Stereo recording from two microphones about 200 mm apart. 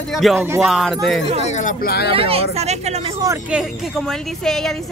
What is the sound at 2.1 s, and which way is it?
Speech, 30° right (ahead or behind).